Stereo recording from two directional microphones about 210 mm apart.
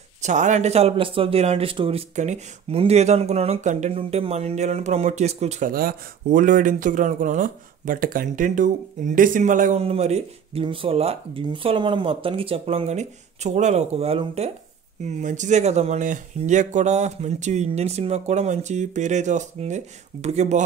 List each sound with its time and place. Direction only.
0.2 s speech: 35° right (ahead or behind)